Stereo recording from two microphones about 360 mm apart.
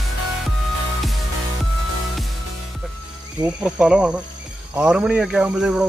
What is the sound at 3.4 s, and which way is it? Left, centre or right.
Speech, centre.